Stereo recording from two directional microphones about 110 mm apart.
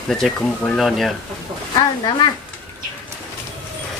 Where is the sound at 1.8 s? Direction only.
45° left (ahead or behind).